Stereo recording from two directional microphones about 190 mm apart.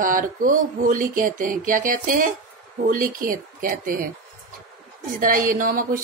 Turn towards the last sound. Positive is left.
turn(degrees=-45)  # may be behind; listen again after turning